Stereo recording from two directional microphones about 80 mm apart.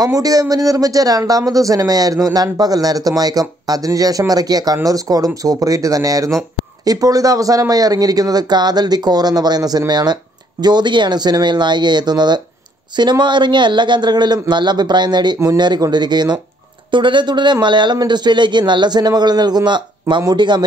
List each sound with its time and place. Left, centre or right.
0.0 s speech: right
16.9 s speech: right